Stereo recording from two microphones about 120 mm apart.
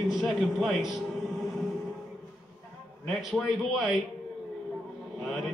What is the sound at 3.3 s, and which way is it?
Speech, centre (ahead or behind).